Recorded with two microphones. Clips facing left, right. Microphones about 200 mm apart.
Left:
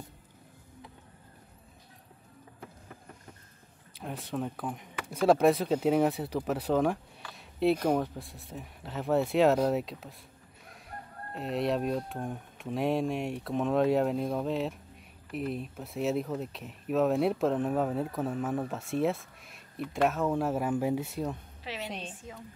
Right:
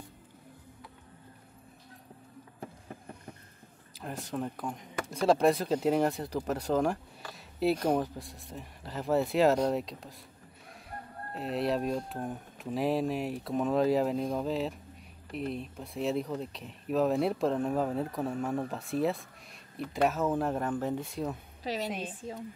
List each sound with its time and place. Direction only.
4.0 s speech: centre (ahead or behind)
11.3 s speech: centre (ahead or behind)
21.6 s a woman's voice: 35° right (ahead or behind)